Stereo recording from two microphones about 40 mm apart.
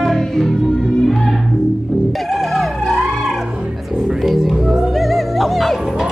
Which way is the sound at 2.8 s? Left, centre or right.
Centre.